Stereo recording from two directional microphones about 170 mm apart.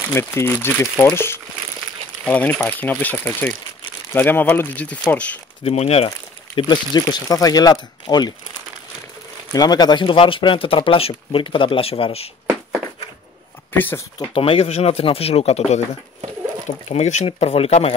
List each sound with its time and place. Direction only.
0.1 s speech: 15° left (ahead or behind)
5.6 s speech: 35° left (ahead or behind)
9.5 s speech: 25° left (ahead or behind)
13.7 s speech: 10° left (ahead or behind)
14.3 s speech: 35° left (ahead or behind)